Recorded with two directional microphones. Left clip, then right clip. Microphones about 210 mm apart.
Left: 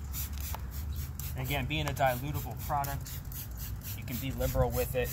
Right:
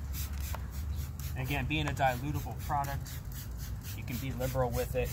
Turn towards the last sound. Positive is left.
turn(degrees=15)  # may be behind; listen again after turning